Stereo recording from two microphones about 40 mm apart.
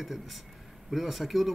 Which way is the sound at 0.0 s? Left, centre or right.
Centre.